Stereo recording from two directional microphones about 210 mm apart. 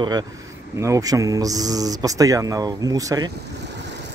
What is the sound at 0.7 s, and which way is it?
Speech, 15° right (ahead or behind).